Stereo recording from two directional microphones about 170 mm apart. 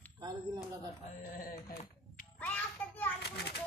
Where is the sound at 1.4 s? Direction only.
55° left (ahead or behind).